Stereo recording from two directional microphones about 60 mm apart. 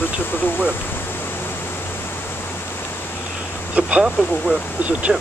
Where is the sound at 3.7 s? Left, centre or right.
Centre.